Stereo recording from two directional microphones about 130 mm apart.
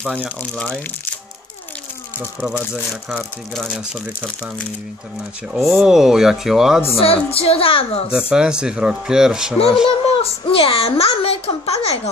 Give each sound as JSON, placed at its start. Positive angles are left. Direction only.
{"t": 0.4, "sound": "speech", "side_deg": 10}
{"t": 2.1, "sound": "speech", "side_deg": -10}
{"t": 3.2, "sound": "speech", "side_deg": 5}
{"t": 5.5, "sound": "speech", "side_deg": -5}
{"t": 7.3, "sound": "a child's voice", "side_deg": 50}
{"t": 8.1, "sound": "speech", "side_deg": -5}
{"t": 9.8, "sound": "a child's voice", "side_deg": 45}